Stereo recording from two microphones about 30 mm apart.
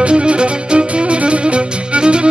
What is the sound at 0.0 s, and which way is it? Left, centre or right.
Music, right.